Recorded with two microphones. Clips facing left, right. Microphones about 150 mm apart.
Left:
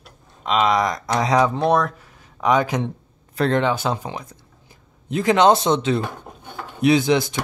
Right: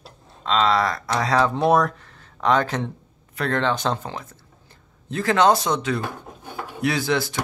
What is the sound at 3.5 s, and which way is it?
Speech, 10° left (ahead or behind).